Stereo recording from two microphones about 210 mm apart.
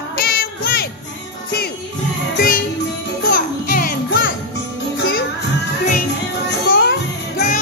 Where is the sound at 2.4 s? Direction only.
45° left (ahead or behind).